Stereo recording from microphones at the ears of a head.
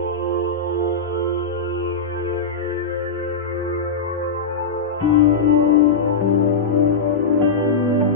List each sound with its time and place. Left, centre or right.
5.0 s music: left